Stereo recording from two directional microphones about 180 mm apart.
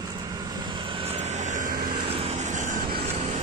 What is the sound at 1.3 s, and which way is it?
Vehicle, 45° right (ahead or behind).